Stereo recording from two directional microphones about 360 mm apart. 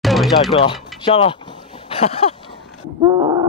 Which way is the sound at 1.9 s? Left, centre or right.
Centre.